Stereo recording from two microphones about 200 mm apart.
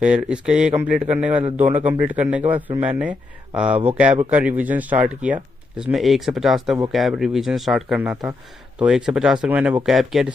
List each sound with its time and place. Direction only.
0.0 s speech: 5° right (ahead or behind)
1.4 s a man's voice: 35° right (ahead or behind)
1.9 s speech: 5° right (ahead or behind)